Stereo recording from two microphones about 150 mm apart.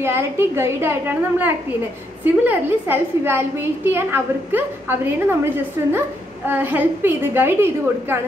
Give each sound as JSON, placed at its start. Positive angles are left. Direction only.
{"t": 0.0, "sound": "a woman's voice", "side_deg": -15}